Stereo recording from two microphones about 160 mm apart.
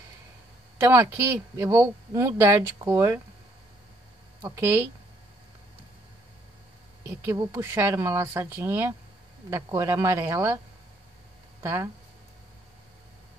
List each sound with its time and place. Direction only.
0.7 s a man's voice: 15° right (ahead or behind)
7.0 s a man's voice: 20° right (ahead or behind)
11.6 s speech: 15° right (ahead or behind)